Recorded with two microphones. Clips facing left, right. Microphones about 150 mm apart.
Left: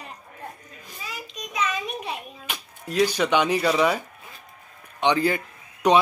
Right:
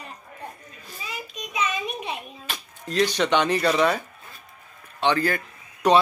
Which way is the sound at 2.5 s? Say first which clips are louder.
Even; 10° left (ahead or behind).